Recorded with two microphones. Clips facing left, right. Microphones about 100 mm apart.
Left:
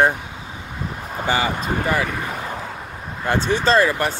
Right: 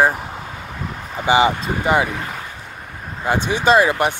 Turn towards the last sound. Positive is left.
turn(degrees=-15)  # may be behind; listen again after turning